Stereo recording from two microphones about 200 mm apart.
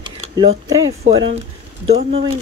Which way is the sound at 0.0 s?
20° right (ahead or behind).